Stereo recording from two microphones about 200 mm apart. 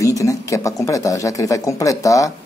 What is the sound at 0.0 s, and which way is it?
Speech, 15° left (ahead or behind).